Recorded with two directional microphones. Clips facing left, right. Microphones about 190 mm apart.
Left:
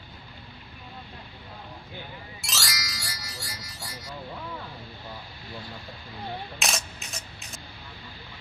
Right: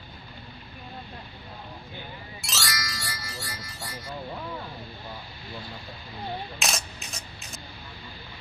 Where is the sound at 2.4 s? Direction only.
Centre (ahead or behind).